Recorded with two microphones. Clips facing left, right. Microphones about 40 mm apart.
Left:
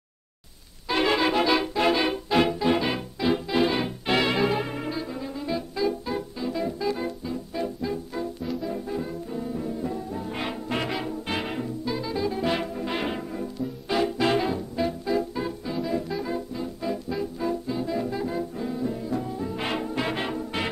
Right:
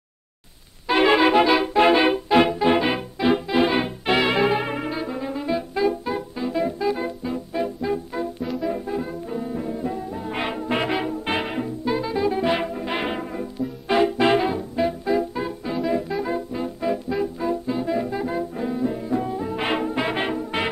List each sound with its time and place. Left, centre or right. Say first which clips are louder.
0.8 s music: right 6 dB; right
1.7 s music: right 6 dB; right
8.6 s brass instrument: right 4 dB; right
13.8 s music: right 5 dB; right
17.4 s brass instrument: right 3 dB; centre